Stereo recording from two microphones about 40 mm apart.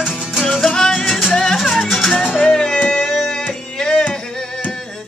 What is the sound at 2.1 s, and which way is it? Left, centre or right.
Music, left.